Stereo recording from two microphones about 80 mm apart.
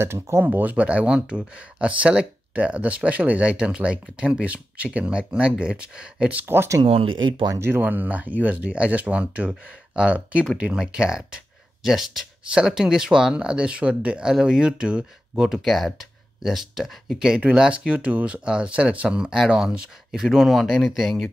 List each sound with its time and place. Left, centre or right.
0.0 s speech: right; by 6.4 s centre
6.4 s speech: right
6.8 s speech: right
7.5 s speech: right; by 21.3 s centre